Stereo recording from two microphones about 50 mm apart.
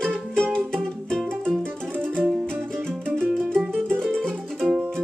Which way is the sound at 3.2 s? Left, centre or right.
Centre.